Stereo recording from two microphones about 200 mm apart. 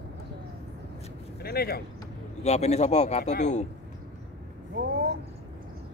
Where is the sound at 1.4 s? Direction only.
50° left (ahead or behind).